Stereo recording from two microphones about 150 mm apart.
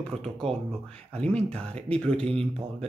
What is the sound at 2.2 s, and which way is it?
Speech, 40° right (ahead or behind).